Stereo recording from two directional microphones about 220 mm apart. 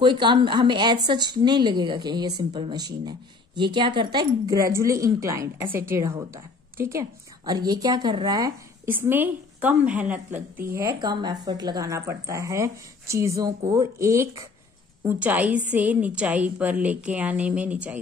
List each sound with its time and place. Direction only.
0.0 s a woman's voice: 20° right (ahead or behind)
11.0 s a woman's voice: 20° right (ahead or behind)